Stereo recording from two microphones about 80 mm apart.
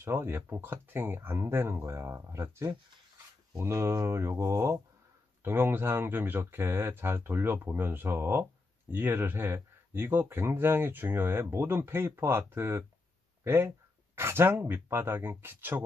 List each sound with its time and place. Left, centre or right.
0.0 s speech: right
5.4 s speech: right
13.4 s a sound: right
14.1 s speech: right